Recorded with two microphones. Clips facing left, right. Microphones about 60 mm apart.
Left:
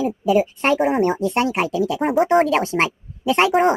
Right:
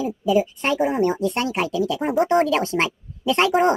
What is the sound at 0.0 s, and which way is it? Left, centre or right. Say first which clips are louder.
Speech: left 2 dB; left.